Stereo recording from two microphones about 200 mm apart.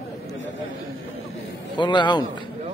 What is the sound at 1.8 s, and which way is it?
Speech, 25° left (ahead or behind).